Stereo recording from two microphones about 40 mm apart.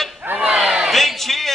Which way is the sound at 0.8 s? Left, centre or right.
Centre.